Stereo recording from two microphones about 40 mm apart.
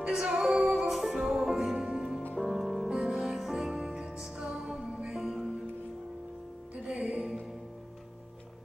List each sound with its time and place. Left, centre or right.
0.2 s music: centre
2.9 s music: centre
6.7 s music: right